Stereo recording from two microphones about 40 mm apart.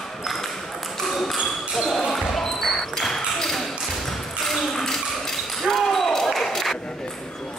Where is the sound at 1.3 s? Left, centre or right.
Centre.